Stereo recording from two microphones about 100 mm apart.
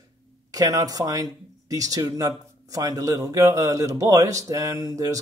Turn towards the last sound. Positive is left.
turn(degrees=-35)  # may be behind; listen again after turning